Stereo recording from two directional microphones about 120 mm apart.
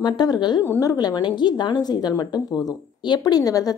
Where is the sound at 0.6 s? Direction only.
25° left (ahead or behind).